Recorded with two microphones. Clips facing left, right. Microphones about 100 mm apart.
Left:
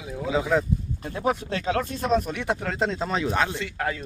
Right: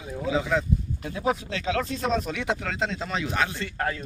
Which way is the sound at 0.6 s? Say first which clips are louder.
Left 1 dB; 45° left (ahead or behind).